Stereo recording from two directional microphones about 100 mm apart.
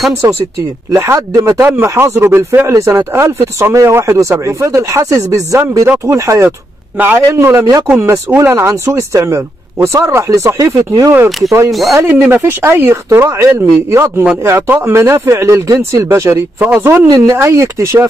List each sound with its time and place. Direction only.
0.2 s speech: 30° right (ahead or behind)
11.2 s speech: centre (ahead or behind)
12.1 s speech: 20° right (ahead or behind)